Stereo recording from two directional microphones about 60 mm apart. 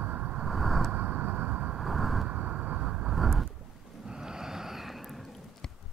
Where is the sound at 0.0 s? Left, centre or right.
Right.